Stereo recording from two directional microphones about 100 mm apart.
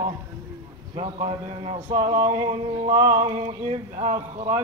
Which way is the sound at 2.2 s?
50° right (ahead or behind).